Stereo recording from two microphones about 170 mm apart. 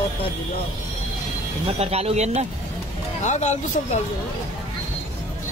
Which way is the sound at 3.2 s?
45° left (ahead or behind).